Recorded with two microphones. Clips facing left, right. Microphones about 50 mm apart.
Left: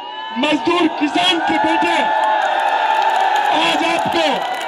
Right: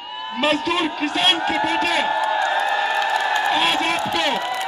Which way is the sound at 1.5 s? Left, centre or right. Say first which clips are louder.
Left 5 dB; left.